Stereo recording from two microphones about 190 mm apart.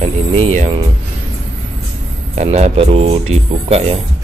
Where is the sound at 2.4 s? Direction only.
35° right (ahead or behind).